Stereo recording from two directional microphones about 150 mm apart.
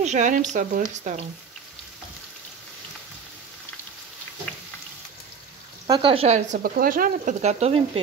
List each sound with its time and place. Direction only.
0.0 s speech: 55° right (ahead or behind)
5.9 s speech: 35° right (ahead or behind); by 6.6 s 50° right (ahead or behind)
6.6 s speech: 70° right (ahead or behind)
7.4 s speech: 40° right (ahead or behind)